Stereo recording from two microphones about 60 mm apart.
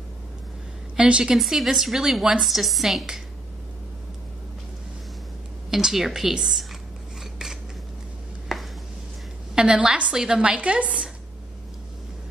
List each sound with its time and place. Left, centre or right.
0.9 s a woman's voice: centre
1.3 s a woman's voice: centre
5.7 s a woman's voice: centre
8.5 s a sound: centre
9.6 s a woman's voice: centre